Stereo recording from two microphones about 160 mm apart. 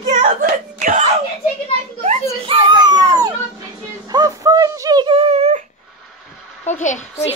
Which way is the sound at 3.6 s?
25° right (ahead or behind).